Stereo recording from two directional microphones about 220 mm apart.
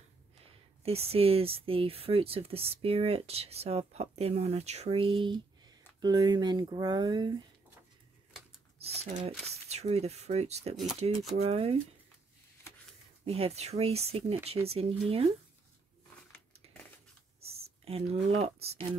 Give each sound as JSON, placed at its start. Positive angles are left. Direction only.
{"t": 0.8, "sound": "speech", "side_deg": -25}
{"t": 8.7, "sound": "speech", "side_deg": -25}
{"t": 13.2, "sound": "speech", "side_deg": -25}
{"t": 17.4, "sound": "speech", "side_deg": -25}